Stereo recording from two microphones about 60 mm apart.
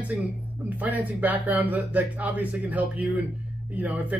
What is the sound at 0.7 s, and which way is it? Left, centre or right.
Speech, right.